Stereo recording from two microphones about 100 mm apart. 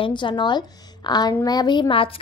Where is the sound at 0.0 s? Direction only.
55° left (ahead or behind).